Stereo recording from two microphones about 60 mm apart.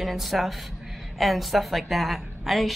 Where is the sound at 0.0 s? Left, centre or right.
Centre.